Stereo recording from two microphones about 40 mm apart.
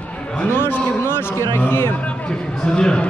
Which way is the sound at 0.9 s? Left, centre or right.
Left.